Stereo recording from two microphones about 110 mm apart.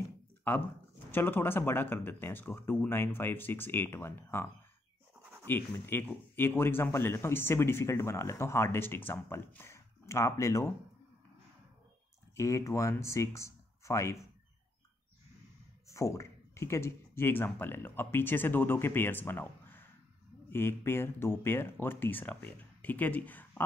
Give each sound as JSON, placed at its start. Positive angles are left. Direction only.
{"t": 0.5, "sound": "speech", "side_deg": 20}
{"t": 12.4, "sound": "speech", "side_deg": 25}
{"t": 15.9, "sound": "speech", "side_deg": 30}